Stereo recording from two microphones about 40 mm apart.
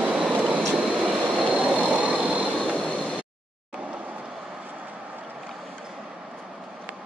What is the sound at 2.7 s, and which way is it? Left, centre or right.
Train, left.